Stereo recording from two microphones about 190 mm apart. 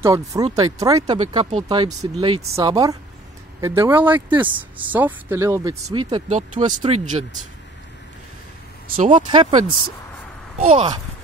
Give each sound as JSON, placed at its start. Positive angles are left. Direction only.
{"t": 0.0, "sound": "speech", "side_deg": -15}
{"t": 1.1, "sound": "speech", "side_deg": -30}
{"t": 6.3, "sound": "speech", "side_deg": -40}
{"t": 8.9, "sound": "speech", "side_deg": -30}
{"t": 10.7, "sound": "speech", "side_deg": -30}